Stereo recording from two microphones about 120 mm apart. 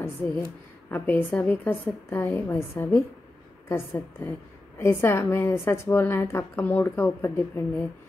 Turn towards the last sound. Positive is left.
turn(degrees=20)  # may be behind; listen again after turning